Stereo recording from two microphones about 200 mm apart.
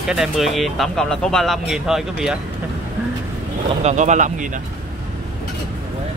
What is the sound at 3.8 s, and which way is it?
Speech, 35° right (ahead or behind).